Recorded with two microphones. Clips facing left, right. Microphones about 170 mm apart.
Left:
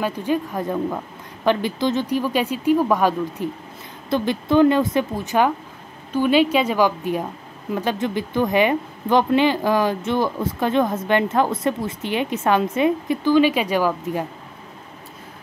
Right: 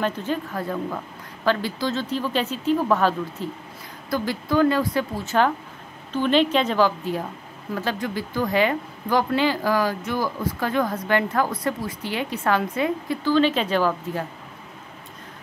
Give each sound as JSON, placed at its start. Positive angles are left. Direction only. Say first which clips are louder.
{"t": 0.0, "sound": "speech", "louder": "left 3 dB", "side_deg": 15}